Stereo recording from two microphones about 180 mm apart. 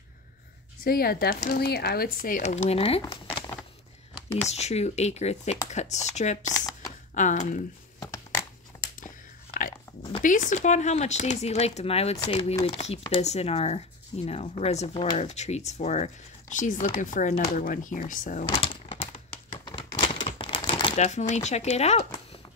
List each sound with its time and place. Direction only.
0.8 s speech: 55° left (ahead or behind); by 3.0 s 35° left (ahead or behind)
3.0 s crumpling: 25° left (ahead or behind)
4.5 s speech: 35° left (ahead or behind)
6.4 s speech: 20° left (ahead or behind)
7.2 s speech: 45° left (ahead or behind)
8.0 s crushing: 15° left (ahead or behind)
9.0 s whispering: 50° left (ahead or behind)
10.2 s speech: 45° left (ahead or behind)
18.6 s a sound: 40° left (ahead or behind)
19.6 s typewriter: 25° left (ahead or behind)
20.9 s speech: 40° left (ahead or behind)